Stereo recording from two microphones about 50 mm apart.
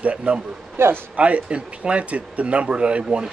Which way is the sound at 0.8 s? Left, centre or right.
Right.